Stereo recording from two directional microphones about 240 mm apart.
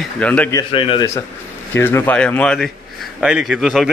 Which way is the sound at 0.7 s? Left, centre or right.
Left.